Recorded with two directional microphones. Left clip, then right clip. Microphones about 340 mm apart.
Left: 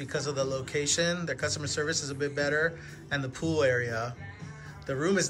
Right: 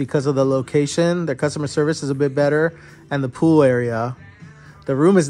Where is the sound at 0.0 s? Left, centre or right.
Centre.